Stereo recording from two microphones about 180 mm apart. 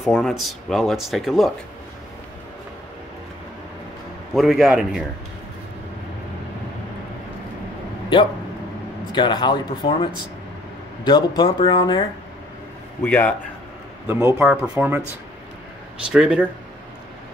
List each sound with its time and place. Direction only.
0.0 s speech: centre (ahead or behind)
4.3 s speech: centre (ahead or behind)
9.1 s speech: 25° left (ahead or behind)
11.1 s speech: 25° left (ahead or behind)
13.0 s a man's voice: 10° left (ahead or behind)
14.0 s speech: 10° right (ahead or behind)
16.1 s speech: 5° right (ahead or behind)